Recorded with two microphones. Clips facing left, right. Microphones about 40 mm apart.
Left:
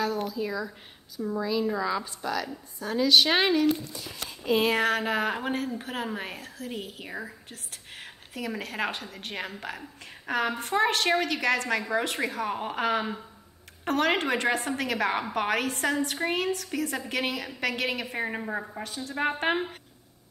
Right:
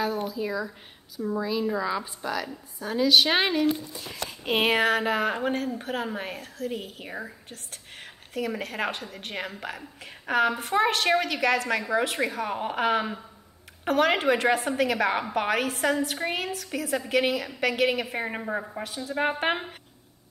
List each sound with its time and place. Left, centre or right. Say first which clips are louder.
0.0 s a woman's voice: right 1 dB; centre
4.1 s speech: left 1 dB; right
4.8 s a woman's voice: right 2 dB; centre